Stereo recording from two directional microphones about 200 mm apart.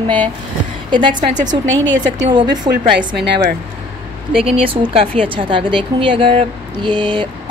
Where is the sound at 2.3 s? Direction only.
20° right (ahead or behind).